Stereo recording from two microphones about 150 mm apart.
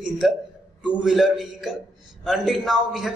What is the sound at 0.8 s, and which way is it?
A man's voice, centre (ahead or behind).